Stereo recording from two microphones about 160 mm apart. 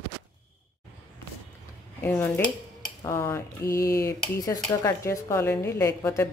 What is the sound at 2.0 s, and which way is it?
Speech, 15° left (ahead or behind).